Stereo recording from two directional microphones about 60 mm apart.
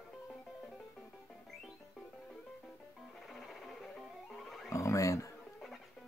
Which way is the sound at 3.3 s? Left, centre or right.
Centre.